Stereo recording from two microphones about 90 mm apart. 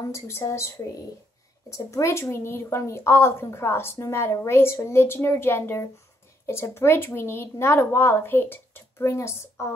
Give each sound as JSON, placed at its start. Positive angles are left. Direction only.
{"t": 0.1, "sound": "a woman's voice", "side_deg": 30}
{"t": 1.7, "sound": "a woman's voice", "side_deg": 35}